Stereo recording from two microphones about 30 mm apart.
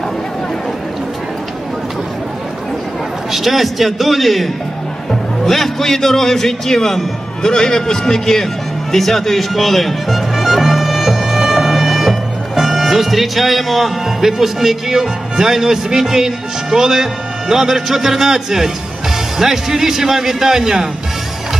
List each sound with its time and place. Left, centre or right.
3.3 s a man's voice: centre
7.4 s a man's voice: left; by 20.9 s centre